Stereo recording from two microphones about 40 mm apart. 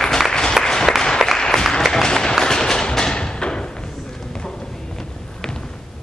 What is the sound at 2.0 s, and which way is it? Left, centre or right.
Applause, centre.